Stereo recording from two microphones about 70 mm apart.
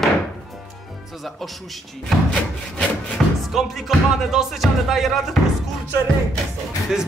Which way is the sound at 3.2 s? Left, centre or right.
Centre.